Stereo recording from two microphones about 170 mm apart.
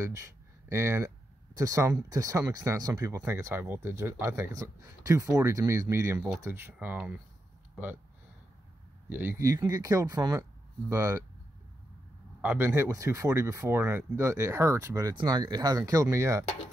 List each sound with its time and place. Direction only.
0.0 s speech: 15° right (ahead or behind)
9.1 s speech: 15° right (ahead or behind)
12.4 s speech: 10° right (ahead or behind)